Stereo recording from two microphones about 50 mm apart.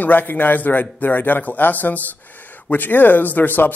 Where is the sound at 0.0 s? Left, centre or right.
Left.